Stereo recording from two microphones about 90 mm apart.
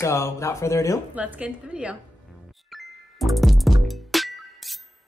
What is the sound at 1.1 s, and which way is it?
Speech, 15° right (ahead or behind).